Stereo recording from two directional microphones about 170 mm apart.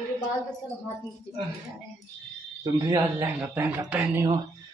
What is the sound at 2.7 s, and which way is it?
Speech, 20° right (ahead or behind).